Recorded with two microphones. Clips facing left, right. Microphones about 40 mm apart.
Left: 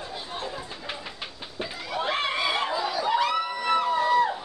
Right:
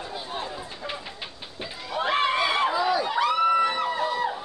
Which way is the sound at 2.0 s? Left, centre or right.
Centre.